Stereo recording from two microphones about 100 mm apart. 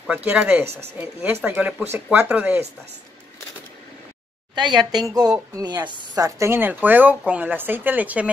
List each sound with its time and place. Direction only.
0.1 s speech: 15° right (ahead or behind)
2.0 s speech: 15° right (ahead or behind)
4.6 s a woman's voice: 50° right (ahead or behind); by 8.3 s 15° right (ahead or behind)